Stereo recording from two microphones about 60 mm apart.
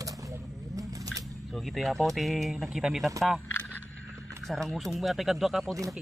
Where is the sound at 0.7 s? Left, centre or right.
Right.